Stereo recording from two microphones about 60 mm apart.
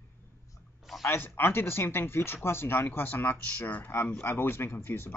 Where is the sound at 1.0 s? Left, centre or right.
Left.